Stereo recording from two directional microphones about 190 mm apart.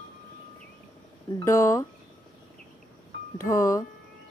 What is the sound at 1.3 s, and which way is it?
Speech, 15° left (ahead or behind).